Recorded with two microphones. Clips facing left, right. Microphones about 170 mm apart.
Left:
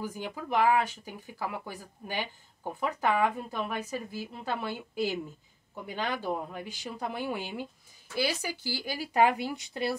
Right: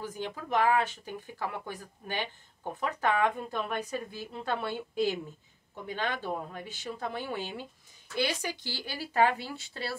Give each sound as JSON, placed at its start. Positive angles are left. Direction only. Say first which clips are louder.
{"t": 0.0, "sound": "speech", "louder": "left 1 dB", "side_deg": 10}